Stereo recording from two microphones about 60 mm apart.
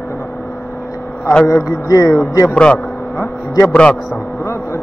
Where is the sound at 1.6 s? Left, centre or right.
Left.